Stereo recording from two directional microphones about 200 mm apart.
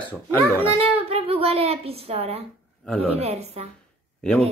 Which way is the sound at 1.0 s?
30° right (ahead or behind).